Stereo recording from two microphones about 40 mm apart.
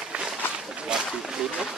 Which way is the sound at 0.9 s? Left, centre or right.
Right.